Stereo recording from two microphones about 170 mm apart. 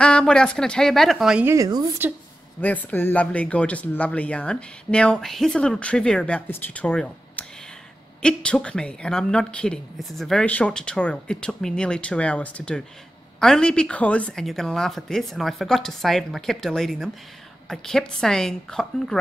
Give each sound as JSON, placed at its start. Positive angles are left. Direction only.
{"t": 0.0, "sound": "speech", "side_deg": 5}
{"t": 1.5, "sound": "a woman's voice", "side_deg": -20}
{"t": 2.6, "sound": "speech", "side_deg": 10}